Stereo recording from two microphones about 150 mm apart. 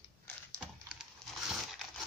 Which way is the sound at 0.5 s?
5° right (ahead or behind).